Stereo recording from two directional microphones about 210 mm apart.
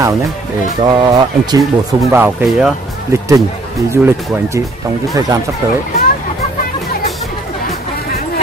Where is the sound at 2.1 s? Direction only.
10° right (ahead or behind).